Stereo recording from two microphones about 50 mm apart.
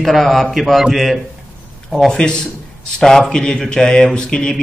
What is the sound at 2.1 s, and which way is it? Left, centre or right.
A man's voice, centre.